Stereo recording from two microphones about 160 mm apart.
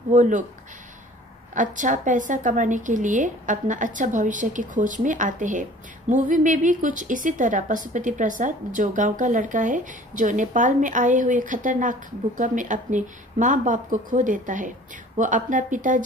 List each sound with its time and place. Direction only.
0.1 s a woman's voice: 50° right (ahead or behind)
1.5 s a woman's voice: 55° right (ahead or behind)